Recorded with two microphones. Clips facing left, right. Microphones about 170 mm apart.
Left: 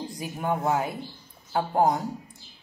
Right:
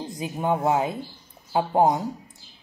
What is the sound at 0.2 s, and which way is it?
Speech, 20° right (ahead or behind).